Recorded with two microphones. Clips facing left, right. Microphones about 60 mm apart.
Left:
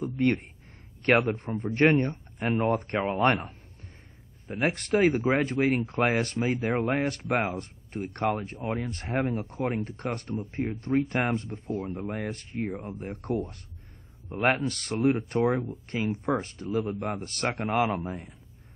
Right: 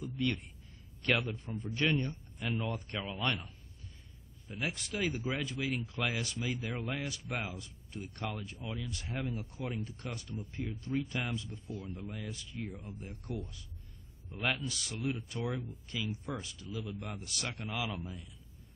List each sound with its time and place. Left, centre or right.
0.0 s speech: left
4.5 s speech: left
6.7 s speech: left
15.9 s speech: left